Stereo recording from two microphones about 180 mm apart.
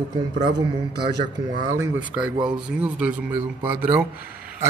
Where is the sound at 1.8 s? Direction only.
5° right (ahead or behind).